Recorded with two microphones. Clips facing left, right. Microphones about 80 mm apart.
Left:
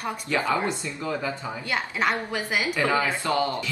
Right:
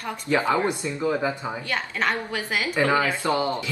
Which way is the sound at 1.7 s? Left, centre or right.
Centre.